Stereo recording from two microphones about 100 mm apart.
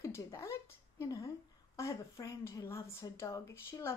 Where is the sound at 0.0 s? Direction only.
30° left (ahead or behind).